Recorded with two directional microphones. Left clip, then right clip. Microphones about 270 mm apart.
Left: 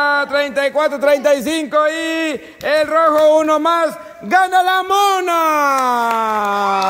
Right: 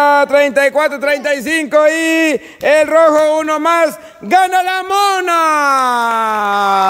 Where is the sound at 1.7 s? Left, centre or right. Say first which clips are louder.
Right 6 dB; centre.